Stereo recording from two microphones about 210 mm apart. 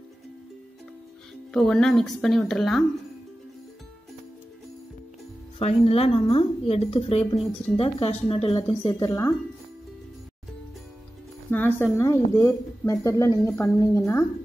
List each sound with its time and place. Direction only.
1.5 s speech: centre (ahead or behind)
5.6 s a woman's voice: 30° left (ahead or behind)
11.5 s speech: 10° left (ahead or behind)